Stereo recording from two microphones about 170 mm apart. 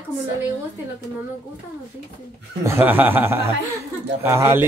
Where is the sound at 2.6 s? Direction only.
10° right (ahead or behind).